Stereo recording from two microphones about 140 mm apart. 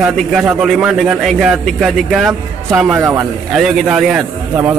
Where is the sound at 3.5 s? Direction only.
5° right (ahead or behind).